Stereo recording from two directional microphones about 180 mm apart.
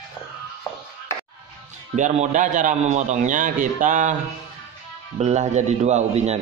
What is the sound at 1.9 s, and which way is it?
A man's voice, 45° right (ahead or behind).